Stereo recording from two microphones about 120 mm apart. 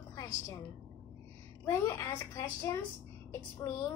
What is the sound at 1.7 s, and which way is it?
A woman's voice, 25° left (ahead or behind).